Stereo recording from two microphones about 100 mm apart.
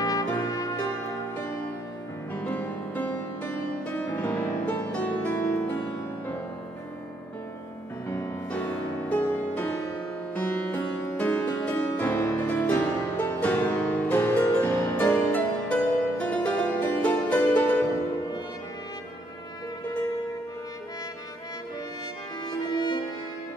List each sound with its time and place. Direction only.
0.0 s music: 35° left (ahead or behind)
2.3 s music: 15° left (ahead or behind)
8.1 s music: 30° left (ahead or behind)
9.1 s music: 15° left (ahead or behind)
22.5 s music: 50° left (ahead or behind)